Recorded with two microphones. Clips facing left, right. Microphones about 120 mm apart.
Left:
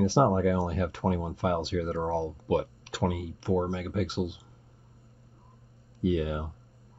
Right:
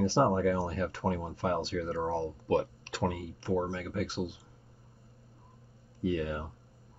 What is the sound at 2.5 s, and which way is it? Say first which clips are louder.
Speech: left 1 dB; 5° left (ahead or behind).